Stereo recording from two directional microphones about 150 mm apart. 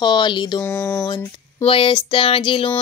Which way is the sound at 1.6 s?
35° left (ahead or behind).